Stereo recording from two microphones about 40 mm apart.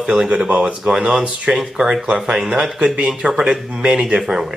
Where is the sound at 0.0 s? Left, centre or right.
Centre.